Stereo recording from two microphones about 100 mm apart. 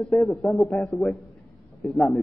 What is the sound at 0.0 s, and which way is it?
A man's voice, 5° left (ahead or behind).